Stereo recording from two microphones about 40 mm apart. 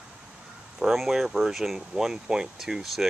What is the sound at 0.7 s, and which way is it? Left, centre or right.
Speech, centre.